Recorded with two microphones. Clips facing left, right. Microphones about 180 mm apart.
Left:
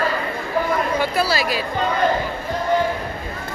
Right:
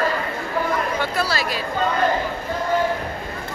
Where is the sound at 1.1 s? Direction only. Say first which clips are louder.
Left 3 dB; 5° left (ahead or behind).